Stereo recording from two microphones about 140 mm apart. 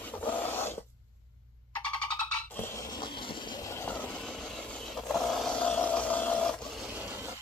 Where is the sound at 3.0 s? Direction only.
35° left (ahead or behind).